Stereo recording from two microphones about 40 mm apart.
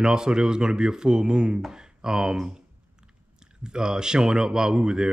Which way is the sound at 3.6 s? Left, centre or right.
Centre.